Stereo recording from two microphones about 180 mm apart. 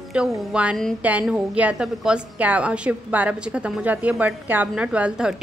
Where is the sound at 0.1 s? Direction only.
5° right (ahead or behind).